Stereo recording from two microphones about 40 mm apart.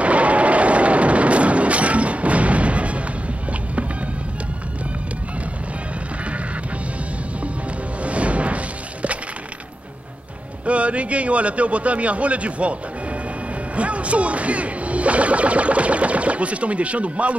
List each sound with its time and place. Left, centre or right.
0.0 s a sound: right
8.0 s shatter: right
10.6 s speech: right